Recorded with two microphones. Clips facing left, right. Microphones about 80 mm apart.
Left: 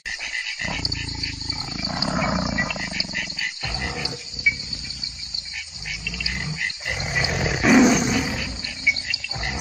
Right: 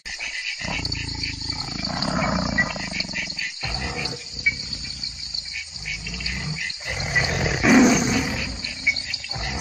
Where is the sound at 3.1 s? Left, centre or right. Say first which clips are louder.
Left 2 dB; left.